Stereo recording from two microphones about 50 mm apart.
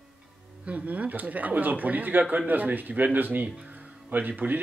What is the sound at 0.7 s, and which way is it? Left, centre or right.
Speech, right.